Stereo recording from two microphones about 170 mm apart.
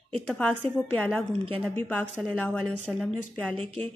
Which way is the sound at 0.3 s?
5° left (ahead or behind).